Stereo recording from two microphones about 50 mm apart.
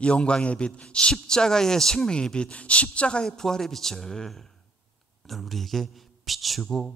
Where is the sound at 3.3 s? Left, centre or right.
Centre.